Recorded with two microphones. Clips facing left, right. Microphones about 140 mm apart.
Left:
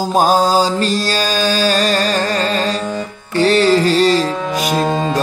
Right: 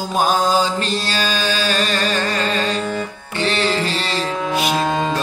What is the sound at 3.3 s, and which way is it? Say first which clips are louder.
Music: left 8 dB; 40° left (ahead or behind).